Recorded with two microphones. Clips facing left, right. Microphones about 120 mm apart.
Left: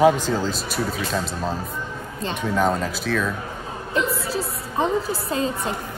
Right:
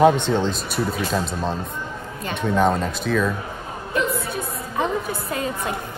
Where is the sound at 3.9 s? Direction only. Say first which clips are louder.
Even; 30° left (ahead or behind).